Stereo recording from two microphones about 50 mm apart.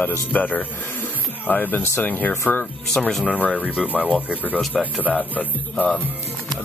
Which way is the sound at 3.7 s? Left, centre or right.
Left.